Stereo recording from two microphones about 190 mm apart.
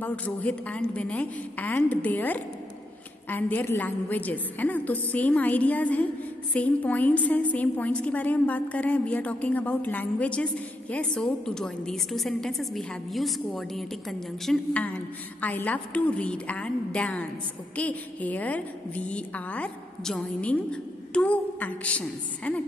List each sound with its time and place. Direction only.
0.0 s a woman's voice: 5° left (ahead or behind)